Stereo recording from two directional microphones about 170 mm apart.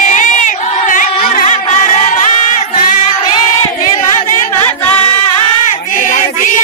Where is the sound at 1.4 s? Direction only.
45° left (ahead or behind).